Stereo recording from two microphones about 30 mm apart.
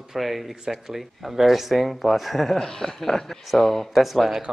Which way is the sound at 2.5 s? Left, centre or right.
Centre.